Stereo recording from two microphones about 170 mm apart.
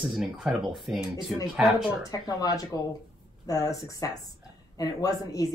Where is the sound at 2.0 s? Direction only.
20° left (ahead or behind).